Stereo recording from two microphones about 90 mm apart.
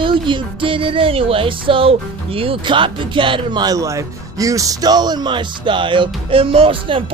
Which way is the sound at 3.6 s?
40° right (ahead or behind).